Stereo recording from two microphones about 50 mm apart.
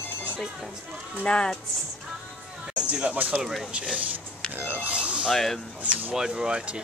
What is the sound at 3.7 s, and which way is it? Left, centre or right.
Speech, right.